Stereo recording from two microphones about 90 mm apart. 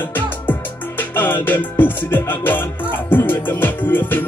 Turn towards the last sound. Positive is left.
turn(degrees=20)  # may be behind; listen again after turning